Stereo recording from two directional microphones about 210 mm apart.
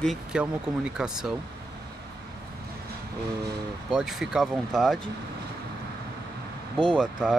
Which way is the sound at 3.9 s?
Centre (ahead or behind).